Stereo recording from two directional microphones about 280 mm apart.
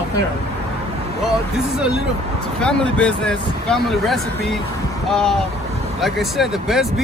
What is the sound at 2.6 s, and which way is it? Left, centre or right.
Speech, centre.